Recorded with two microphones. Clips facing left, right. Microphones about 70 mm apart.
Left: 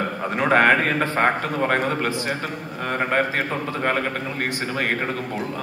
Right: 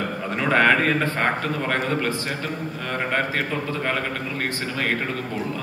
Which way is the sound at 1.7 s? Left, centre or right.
Left.